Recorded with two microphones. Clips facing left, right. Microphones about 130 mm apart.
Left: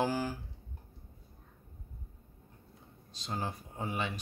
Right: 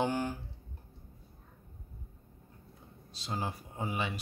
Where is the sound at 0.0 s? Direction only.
5° left (ahead or behind).